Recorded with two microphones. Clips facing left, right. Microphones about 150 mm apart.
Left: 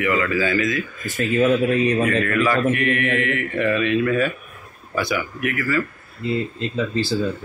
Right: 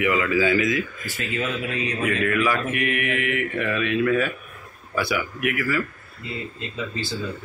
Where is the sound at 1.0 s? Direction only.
50° left (ahead or behind).